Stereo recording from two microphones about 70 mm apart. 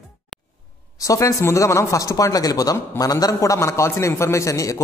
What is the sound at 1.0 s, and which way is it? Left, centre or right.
Speech, left.